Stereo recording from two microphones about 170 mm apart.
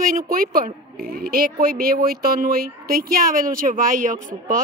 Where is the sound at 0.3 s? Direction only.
55° right (ahead or behind).